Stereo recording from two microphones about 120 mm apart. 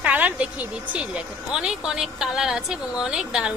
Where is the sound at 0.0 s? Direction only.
10° right (ahead or behind).